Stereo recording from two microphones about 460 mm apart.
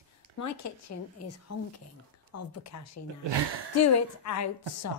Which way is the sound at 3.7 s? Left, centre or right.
Left.